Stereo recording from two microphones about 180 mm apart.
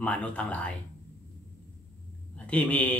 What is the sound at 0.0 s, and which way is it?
Speech, 10° left (ahead or behind).